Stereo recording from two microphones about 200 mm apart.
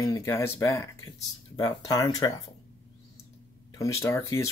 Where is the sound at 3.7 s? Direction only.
15° left (ahead or behind).